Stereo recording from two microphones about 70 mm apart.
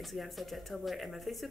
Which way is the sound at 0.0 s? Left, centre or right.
Centre.